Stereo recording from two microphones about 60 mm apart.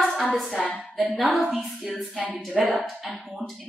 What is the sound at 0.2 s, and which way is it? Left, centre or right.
A woman's voice, centre.